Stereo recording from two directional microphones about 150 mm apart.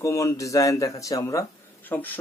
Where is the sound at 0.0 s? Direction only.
20° left (ahead or behind).